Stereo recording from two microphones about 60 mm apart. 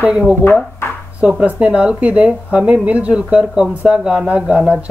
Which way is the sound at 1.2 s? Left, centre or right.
Centre.